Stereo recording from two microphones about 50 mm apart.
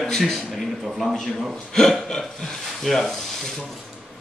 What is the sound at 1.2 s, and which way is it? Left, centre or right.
Speech, centre.